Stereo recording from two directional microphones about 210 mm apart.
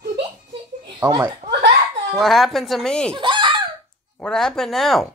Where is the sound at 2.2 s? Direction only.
Centre (ahead or behind).